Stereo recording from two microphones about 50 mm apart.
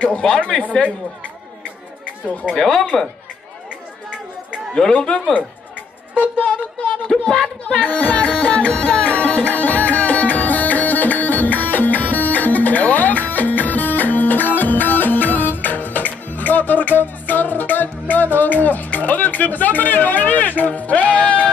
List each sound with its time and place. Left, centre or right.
0.0 s speech: centre
2.2 s speech: left
2.5 s speech: centre
4.1 s chatter: right
7.1 s speech: centre
7.8 s music: left